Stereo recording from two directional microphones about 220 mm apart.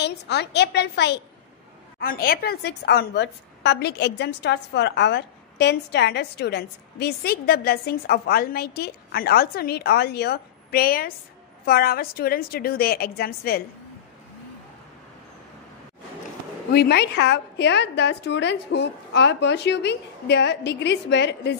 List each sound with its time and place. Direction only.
0.0 s a woman's voice: 50° left (ahead or behind)
16.7 s a woman's voice: 50° left (ahead or behind)